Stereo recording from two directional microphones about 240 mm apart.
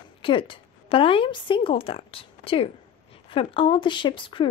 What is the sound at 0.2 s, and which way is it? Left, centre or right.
A woman's voice, left.